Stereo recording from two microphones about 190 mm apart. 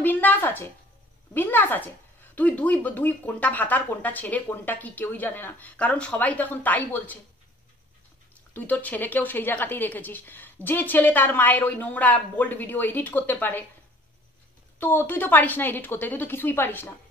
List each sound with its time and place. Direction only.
0.0 s a sound: 10° left (ahead or behind)
1.3 s a woman's voice: 10° left (ahead or behind)
8.5 s a woman's voice: 10° left (ahead or behind)
14.8 s a woman's voice: 10° left (ahead or behind)